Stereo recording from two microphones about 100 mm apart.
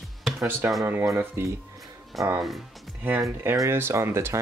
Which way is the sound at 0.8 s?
20° right (ahead or behind).